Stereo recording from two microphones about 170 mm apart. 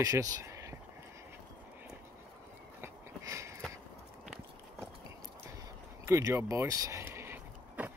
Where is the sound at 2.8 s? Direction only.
15° right (ahead or behind).